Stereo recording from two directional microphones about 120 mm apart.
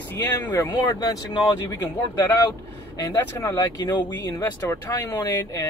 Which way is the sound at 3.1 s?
30° left (ahead or behind).